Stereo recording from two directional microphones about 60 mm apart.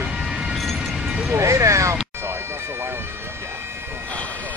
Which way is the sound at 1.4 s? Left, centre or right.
Right.